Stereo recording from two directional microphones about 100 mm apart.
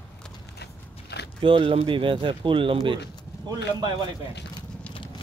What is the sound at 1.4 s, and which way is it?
Speech, 65° right (ahead or behind).